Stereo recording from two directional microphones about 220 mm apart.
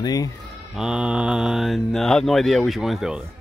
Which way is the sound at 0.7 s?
5° right (ahead or behind).